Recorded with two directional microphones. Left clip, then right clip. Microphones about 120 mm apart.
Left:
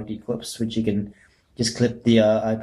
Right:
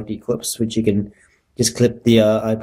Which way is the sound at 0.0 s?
35° right (ahead or behind).